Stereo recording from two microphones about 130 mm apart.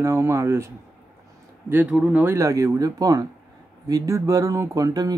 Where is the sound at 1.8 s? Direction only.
5° right (ahead or behind).